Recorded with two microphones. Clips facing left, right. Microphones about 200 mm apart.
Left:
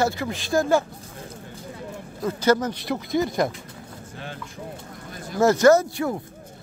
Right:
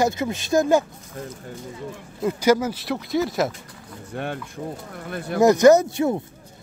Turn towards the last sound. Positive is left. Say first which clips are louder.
# right 2 dB
turn(degrees=-20)  # may be behind; listen again after turning